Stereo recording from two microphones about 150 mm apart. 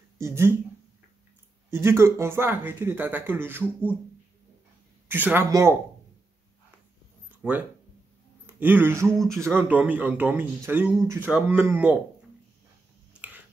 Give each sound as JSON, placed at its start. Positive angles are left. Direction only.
{"t": 0.2, "sound": "speech", "side_deg": -15}
{"t": 1.7, "sound": "speech", "side_deg": -15}
{"t": 5.0, "sound": "speech", "side_deg": -15}
{"t": 7.2, "sound": "a sound", "side_deg": -10}
{"t": 8.5, "sound": "speech", "side_deg": -10}